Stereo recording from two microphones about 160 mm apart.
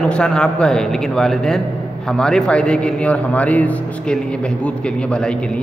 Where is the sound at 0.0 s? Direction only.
5° left (ahead or behind).